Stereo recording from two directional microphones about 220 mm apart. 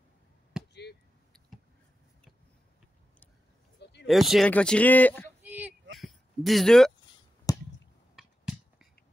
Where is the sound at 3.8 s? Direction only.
50° left (ahead or behind).